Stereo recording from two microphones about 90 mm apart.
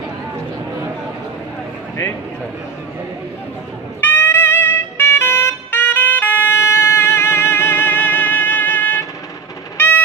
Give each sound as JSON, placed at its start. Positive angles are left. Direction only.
{"t": 4.0, "sound": "music", "side_deg": 20}
{"t": 9.8, "sound": "fowl", "side_deg": 20}